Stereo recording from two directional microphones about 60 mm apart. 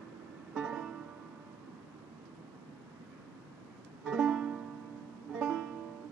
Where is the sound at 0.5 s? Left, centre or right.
Centre.